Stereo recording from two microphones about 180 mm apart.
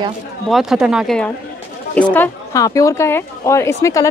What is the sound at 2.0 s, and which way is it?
Speech, 15° left (ahead or behind).